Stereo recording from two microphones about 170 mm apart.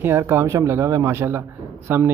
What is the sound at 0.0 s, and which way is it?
Speech, 15° right (ahead or behind).